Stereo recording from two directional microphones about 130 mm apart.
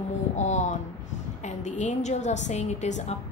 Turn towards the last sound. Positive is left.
turn(degrees=60)  # may be behind; listen again after turning